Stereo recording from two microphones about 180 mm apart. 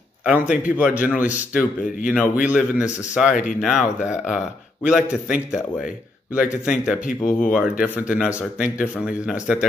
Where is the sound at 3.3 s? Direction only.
45° left (ahead or behind).